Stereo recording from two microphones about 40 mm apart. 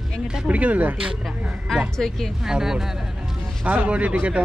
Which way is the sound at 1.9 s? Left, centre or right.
Centre.